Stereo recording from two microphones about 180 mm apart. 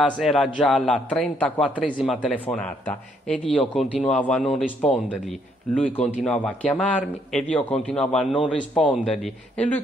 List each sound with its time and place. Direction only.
0.2 s speech: centre (ahead or behind)
6.2 s speech: 5° left (ahead or behind)